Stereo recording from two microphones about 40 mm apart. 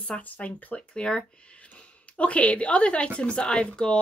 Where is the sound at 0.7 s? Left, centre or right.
Left.